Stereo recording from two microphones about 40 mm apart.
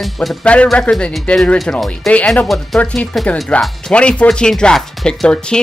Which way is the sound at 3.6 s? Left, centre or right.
Left.